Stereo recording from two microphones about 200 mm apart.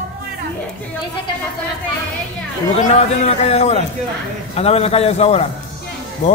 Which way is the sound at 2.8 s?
30° left (ahead or behind).